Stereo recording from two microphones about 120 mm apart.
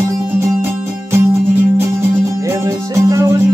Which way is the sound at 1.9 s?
25° right (ahead or behind).